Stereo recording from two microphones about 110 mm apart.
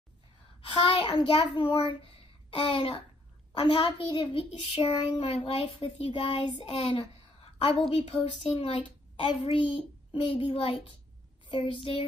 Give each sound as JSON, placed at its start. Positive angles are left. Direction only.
{"t": 0.7, "sound": "a child's voice", "side_deg": 50}
{"t": 7.9, "sound": "a child's voice", "side_deg": 65}
{"t": 8.7, "sound": "a woman's voice", "side_deg": 45}
{"t": 9.5, "sound": "a child's voice", "side_deg": 55}